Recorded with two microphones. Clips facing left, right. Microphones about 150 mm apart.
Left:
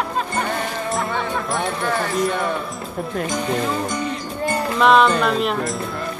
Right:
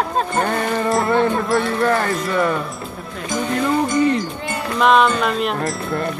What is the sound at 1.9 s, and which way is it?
Speech, 65° right (ahead or behind).